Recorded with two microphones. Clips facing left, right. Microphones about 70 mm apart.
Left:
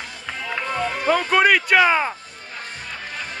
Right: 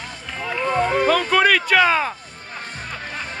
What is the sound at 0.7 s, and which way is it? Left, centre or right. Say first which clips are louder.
Music: right 8 dB; right.